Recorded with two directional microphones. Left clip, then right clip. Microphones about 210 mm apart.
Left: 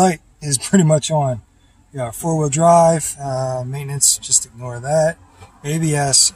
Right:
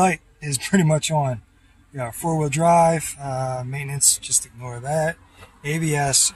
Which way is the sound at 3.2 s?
20° left (ahead or behind).